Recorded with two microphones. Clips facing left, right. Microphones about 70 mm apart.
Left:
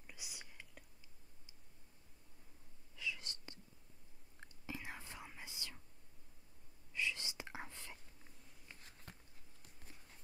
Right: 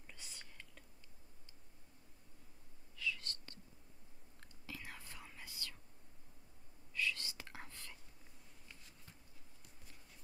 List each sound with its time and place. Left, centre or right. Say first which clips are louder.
0.0 s whispering: left 1 dB; centre
3.0 s whispering: right 2 dB; centre
6.9 s whispering: right 1 dB; centre
9.1 s a sound: left 7 dB; left